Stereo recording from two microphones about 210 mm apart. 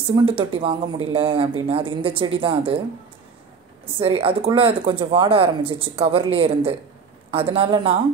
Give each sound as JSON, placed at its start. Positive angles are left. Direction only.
{"t": 0.0, "sound": "speech", "side_deg": -25}
{"t": 4.0, "sound": "speech", "side_deg": -25}